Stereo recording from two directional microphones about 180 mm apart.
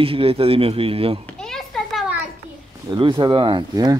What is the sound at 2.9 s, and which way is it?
Speech, 25° right (ahead or behind).